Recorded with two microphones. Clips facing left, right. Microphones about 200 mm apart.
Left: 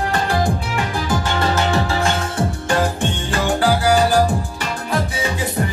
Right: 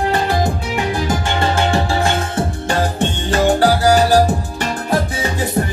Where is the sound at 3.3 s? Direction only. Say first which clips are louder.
Right 5 dB; 40° right (ahead or behind).